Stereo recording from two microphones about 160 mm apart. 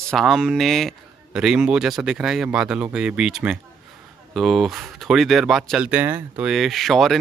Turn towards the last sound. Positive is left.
turn(degrees=0)  # may be behind; listen again after turning